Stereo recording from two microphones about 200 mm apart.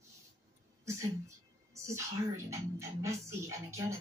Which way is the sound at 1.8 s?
15° right (ahead or behind).